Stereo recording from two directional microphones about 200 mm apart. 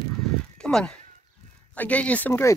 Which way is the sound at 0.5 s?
5° left (ahead or behind).